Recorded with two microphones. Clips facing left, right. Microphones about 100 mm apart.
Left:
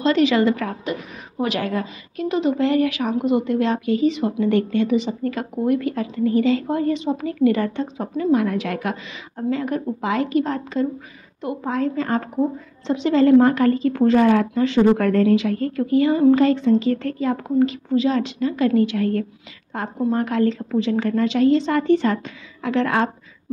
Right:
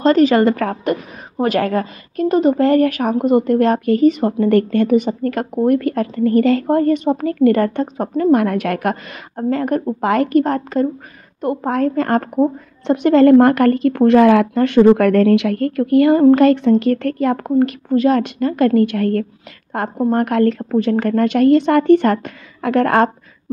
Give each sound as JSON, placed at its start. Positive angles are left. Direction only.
{"t": 0.0, "sound": "a woman's voice", "side_deg": -45}